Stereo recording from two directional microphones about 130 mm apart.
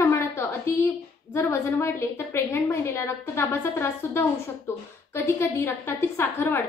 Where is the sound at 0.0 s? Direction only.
20° left (ahead or behind).